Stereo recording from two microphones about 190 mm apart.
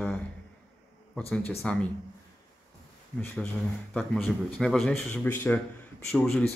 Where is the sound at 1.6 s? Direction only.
5° left (ahead or behind).